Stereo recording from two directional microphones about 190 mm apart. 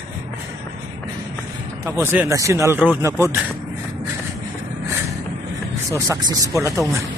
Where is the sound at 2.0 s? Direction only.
15° right (ahead or behind).